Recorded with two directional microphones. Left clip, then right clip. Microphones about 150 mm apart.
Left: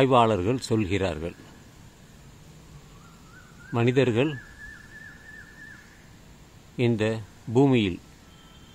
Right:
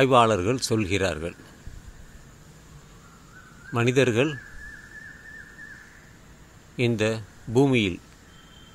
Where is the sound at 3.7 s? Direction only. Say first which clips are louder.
Right 1 dB; 10° right (ahead or behind).